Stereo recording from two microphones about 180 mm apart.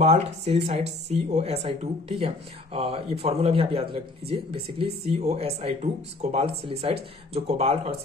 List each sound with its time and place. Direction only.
0.0 s speech: 35° right (ahead or behind)